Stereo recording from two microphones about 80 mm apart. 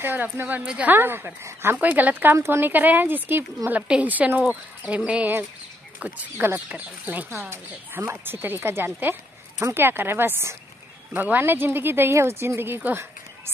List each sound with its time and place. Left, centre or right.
0.0 s speech: right
0.9 s speech: right
2.3 s speech: right
2.6 s speech: right
3.8 s speech: centre
7.4 s speech: right